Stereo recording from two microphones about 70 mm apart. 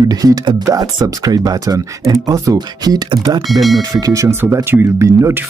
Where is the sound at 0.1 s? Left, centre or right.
Right.